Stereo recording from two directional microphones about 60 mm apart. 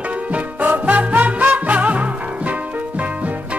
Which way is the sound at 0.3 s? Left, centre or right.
Right.